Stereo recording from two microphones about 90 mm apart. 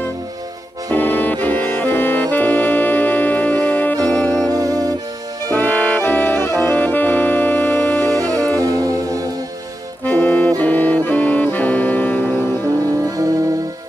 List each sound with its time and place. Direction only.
0.9 s music: 20° left (ahead or behind)
4.5 s music: 45° right (ahead or behind)
5.5 s saxophone: 20° left (ahead or behind)
8.2 s music: 40° right (ahead or behind)
10.0 s saxophone: 20° left (ahead or behind)
12.8 s music: 40° right (ahead or behind)